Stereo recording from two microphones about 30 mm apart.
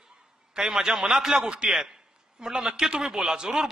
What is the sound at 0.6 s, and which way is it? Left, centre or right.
Speech, right.